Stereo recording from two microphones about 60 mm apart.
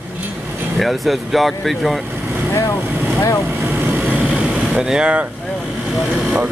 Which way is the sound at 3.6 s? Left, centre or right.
Right.